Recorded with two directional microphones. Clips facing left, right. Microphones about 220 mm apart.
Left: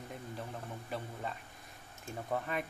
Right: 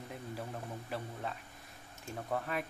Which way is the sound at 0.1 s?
Centre (ahead or behind).